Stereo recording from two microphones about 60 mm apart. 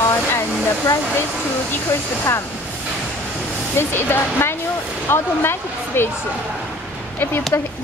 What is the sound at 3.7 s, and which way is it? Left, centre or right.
Speech, left.